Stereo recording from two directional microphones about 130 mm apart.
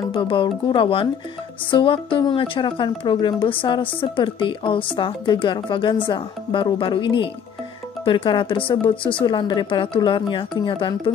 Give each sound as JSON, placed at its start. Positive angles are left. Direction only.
{"t": 0.1, "sound": "speech", "side_deg": 40}